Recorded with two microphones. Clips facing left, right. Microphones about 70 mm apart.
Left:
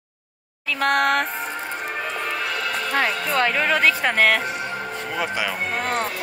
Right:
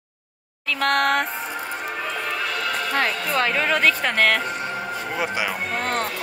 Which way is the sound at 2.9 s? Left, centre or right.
Centre.